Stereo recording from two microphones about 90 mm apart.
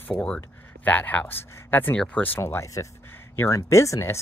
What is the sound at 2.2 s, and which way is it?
Speech, 25° left (ahead or behind).